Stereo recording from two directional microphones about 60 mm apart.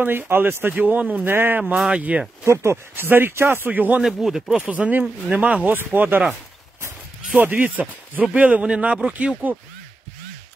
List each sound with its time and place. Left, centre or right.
0.0 s speech: right
1.3 s speech: right
1.9 s speech: right
2.4 s speech: right
4.0 s speech: centre
4.6 s speech: right
7.2 s speech: right